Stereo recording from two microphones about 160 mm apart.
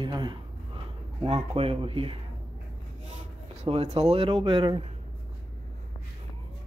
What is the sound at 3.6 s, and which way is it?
Speech, 40° right (ahead or behind).